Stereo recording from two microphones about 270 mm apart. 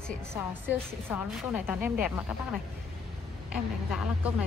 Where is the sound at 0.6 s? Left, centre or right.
Centre.